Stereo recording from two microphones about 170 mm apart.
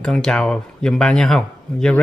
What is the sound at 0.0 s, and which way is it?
Speech, 5° left (ahead or behind).